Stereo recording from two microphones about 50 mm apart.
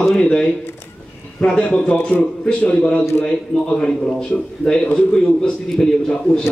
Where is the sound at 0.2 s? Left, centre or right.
Centre.